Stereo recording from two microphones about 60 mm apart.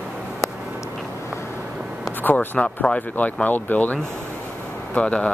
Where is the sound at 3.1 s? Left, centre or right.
Left.